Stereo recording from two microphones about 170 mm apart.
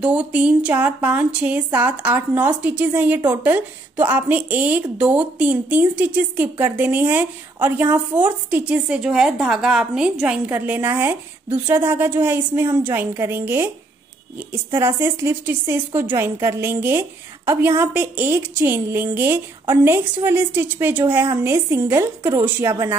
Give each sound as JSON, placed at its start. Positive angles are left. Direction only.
{"t": 0.0, "sound": "a woman's voice", "side_deg": -5}